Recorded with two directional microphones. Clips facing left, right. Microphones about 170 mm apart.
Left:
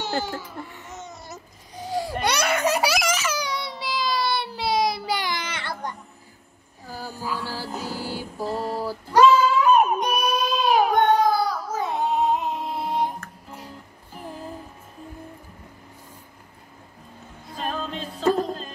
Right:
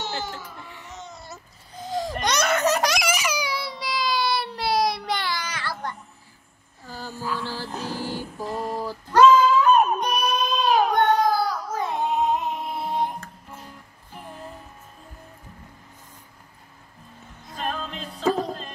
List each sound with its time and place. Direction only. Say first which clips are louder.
0.9 s baby cry: left 2 dB; 20° left (ahead or behind)
3.1 s baby cry: even; 10° right (ahead or behind); by 5.3 s 5° left (ahead or behind)
5.3 s baby cry: even; 25° left (ahead or behind)
6.9 s a sound: even; 15° left (ahead or behind)
7.4 s music: even; 40° left (ahead or behind)
7.7 s music: right 1 dB; 5° left (ahead or behind)
8.1 s a sound: left 1 dB; 10° left (ahead or behind)
8.7 s female singing: right 1 dB; 10° left (ahead or behind)
11.3 s child singing: left 1 dB; centre (ahead or behind)
12.7 s music: left 1 dB; 15° left (ahead or behind)
17.6 s music: left 1 dB; centre (ahead or behind)